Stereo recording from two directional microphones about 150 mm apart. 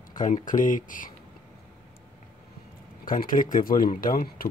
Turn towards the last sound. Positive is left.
turn(degrees=75)  # may be behind; listen again after turning